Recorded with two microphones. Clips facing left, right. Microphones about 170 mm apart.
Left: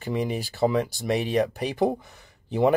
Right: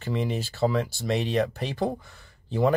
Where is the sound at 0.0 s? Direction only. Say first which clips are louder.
Left 1 dB; 15° left (ahead or behind).